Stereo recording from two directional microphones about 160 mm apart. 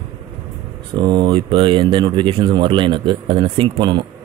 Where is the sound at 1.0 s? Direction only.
30° right (ahead or behind).